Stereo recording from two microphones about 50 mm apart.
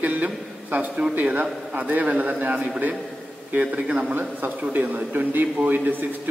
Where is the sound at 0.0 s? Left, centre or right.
Right.